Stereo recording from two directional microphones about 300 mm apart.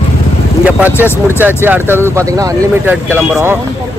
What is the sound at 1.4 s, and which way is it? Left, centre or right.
Speech, centre.